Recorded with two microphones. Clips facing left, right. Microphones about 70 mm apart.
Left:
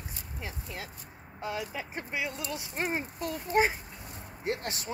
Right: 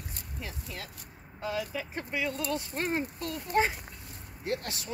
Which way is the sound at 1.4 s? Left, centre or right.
Left.